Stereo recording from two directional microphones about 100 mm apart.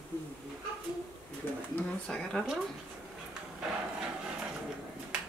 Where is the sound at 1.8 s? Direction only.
20° left (ahead or behind).